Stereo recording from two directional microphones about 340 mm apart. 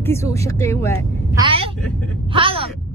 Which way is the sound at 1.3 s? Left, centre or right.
Centre.